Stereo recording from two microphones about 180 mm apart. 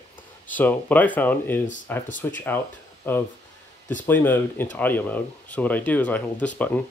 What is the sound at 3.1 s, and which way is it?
Speech, 10° left (ahead or behind).